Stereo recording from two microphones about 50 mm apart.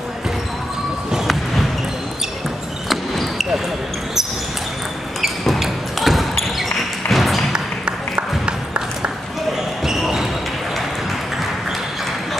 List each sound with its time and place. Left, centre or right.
1.1 s a sound: centre
2.9 s basketball bounce: centre
5.2 s basketball bounce: centre
7.1 s music: centre
7.5 s a sound: centre
9.8 s basketball bounce: centre